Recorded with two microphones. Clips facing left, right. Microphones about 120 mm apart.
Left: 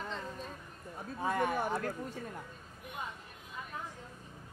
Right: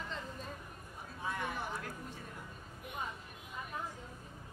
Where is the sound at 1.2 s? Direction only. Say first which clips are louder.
Left 7 dB; 50° left (ahead or behind).